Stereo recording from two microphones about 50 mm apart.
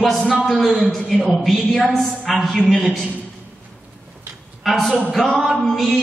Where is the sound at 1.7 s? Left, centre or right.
Centre.